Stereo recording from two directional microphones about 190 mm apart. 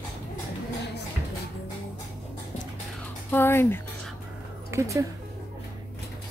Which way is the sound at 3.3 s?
10° left (ahead or behind).